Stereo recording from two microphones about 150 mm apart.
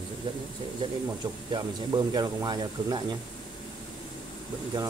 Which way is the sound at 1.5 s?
25° right (ahead or behind).